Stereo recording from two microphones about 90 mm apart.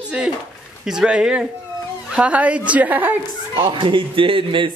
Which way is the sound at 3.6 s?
65° right (ahead or behind).